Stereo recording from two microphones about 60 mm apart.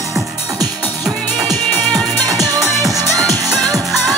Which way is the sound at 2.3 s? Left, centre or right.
Right.